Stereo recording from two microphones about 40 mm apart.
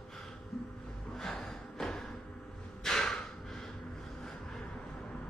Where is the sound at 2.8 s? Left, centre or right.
Centre.